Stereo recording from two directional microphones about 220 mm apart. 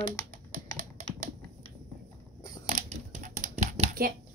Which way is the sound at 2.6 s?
35° right (ahead or behind).